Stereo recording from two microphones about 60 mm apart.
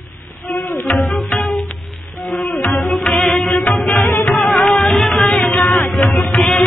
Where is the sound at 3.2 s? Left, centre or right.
Centre.